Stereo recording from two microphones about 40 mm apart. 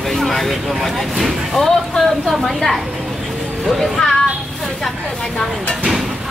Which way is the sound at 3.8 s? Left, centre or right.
Centre.